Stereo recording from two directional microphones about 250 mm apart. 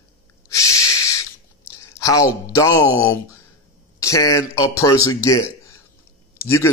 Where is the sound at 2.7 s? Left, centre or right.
Left.